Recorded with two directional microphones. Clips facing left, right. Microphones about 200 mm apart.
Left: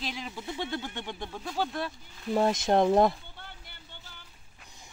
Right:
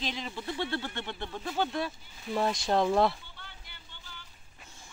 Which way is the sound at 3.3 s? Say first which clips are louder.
Left 3 dB; 50° left (ahead or behind).